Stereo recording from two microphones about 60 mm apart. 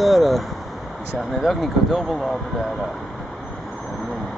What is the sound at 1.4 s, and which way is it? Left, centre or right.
Speech, centre.